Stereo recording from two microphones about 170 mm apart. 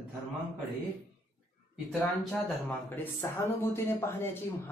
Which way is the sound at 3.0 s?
15° left (ahead or behind).